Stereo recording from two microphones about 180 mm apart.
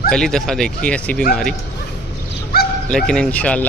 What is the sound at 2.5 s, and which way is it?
Honk, 60° left (ahead or behind).